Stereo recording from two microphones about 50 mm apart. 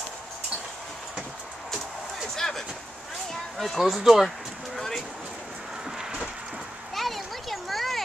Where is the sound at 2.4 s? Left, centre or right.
Centre.